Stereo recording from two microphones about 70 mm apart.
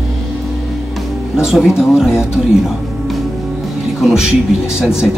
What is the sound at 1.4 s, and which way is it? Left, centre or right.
Speech, centre.